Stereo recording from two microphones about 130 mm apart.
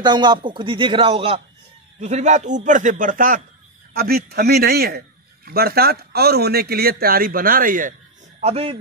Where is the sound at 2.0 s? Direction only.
65° right (ahead or behind); by 3.4 s 90° right.